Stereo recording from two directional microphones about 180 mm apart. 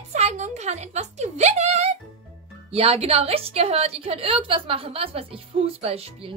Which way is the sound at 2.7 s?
35° right (ahead or behind).